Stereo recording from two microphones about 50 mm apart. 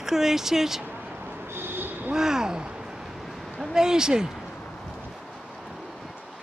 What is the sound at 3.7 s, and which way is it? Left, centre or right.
Speech, centre.